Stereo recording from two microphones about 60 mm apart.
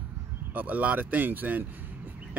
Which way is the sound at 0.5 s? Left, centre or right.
Right.